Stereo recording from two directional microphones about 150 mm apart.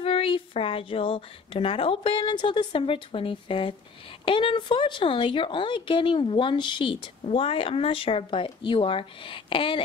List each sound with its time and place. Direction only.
0.0 s speech: 35° left (ahead or behind)